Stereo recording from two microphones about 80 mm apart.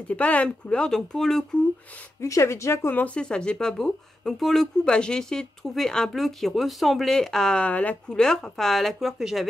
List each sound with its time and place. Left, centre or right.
0.1 s speech: centre
2.1 s speech: left
3.0 s speech: centre